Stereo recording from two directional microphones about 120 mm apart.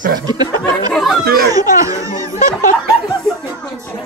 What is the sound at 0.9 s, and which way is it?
Chatter, centre (ahead or behind).